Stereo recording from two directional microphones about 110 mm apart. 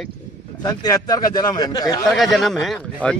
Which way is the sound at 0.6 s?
35° left (ahead or behind).